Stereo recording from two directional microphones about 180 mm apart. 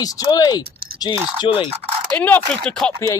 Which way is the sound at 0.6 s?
55° right (ahead or behind).